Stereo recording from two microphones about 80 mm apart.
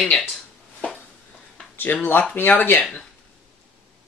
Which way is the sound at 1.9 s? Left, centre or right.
Left.